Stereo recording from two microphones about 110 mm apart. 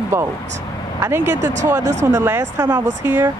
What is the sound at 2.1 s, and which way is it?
Speech, 20° right (ahead or behind).